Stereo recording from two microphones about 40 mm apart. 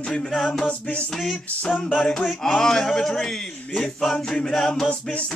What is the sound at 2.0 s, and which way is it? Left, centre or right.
Speech, centre.